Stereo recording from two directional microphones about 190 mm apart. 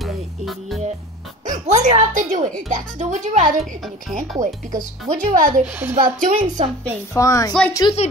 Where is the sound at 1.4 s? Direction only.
40° right (ahead or behind).